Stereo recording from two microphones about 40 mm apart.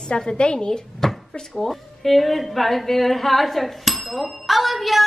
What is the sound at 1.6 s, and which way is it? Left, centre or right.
A woman's voice, centre.